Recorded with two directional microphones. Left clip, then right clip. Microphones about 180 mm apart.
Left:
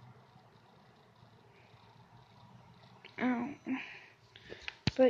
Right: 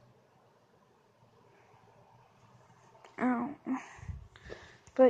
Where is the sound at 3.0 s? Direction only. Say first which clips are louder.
Right 3 dB; 5° right (ahead or behind).